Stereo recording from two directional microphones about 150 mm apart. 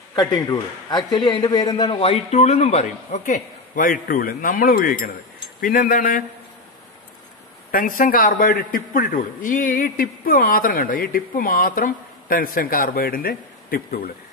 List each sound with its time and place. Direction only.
0.1 s a man's voice: 25° left (ahead or behind)
2.0 s a man's voice: 45° left (ahead or behind); by 6.2 s 65° left (ahead or behind)
7.7 s a man's voice: 65° left (ahead or behind)